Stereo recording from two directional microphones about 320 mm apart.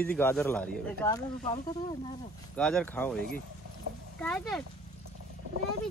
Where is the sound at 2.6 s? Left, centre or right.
Centre.